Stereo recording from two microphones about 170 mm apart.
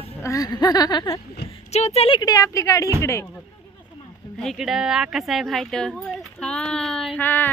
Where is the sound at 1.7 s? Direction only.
40° left (ahead or behind).